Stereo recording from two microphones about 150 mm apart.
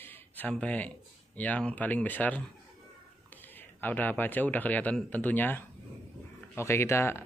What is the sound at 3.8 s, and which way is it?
Speech, 10° left (ahead or behind).